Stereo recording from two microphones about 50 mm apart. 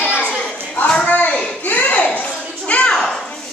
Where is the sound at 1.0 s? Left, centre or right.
Left.